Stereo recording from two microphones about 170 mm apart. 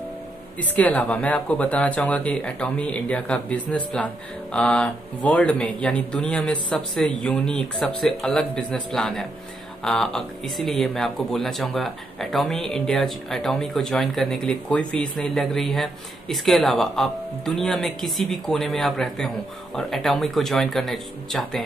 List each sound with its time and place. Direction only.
0.6 s speech: 10° left (ahead or behind)